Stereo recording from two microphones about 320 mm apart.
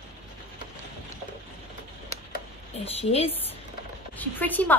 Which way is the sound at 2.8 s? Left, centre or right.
Centre.